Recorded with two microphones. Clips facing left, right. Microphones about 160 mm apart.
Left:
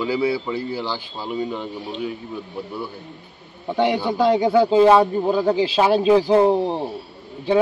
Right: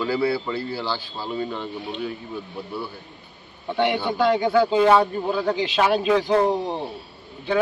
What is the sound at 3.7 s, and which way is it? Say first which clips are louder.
A man's voice: left 2 dB; 35° left (ahead or behind).